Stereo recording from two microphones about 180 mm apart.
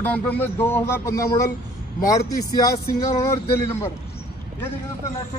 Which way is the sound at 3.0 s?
20° left (ahead or behind).